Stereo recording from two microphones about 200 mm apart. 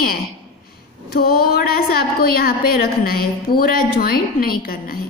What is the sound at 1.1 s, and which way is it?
A woman's voice, 50° left (ahead or behind).